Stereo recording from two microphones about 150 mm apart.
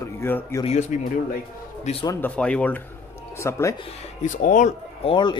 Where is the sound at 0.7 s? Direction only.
50° left (ahead or behind).